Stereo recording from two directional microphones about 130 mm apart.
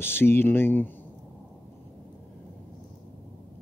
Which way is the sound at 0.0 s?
15° left (ahead or behind).